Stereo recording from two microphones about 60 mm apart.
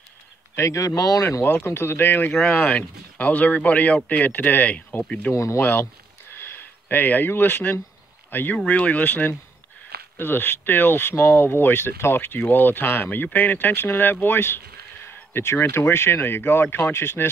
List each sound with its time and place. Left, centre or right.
0.6 s speech: left
1.4 s speech: left
2.5 s speech: left
5.3 s speech: left
6.9 s speech: left
8.6 s speech: left